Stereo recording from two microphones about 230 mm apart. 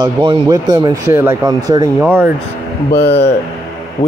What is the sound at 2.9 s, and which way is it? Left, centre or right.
Speech, left.